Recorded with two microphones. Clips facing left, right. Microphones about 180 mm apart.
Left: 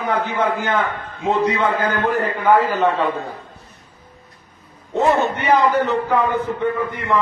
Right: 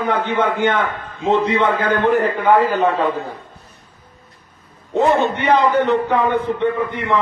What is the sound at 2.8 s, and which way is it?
Speech, centre (ahead or behind).